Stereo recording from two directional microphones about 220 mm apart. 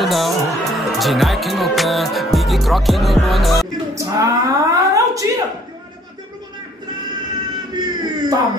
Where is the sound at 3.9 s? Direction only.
15° right (ahead or behind).